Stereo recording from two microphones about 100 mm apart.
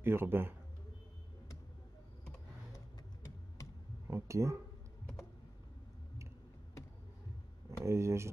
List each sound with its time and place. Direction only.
0.0 s a man's voice: 20° right (ahead or behind)
4.1 s a man's voice: 30° right (ahead or behind)
7.8 s a man's voice: 30° right (ahead or behind)